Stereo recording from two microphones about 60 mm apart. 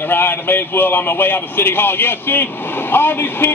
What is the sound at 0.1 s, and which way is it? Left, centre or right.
Speech, left.